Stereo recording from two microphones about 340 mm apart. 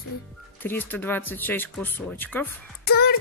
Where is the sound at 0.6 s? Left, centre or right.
Centre.